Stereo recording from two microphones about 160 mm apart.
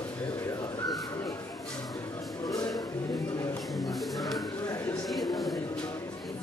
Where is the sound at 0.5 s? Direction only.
25° left (ahead or behind).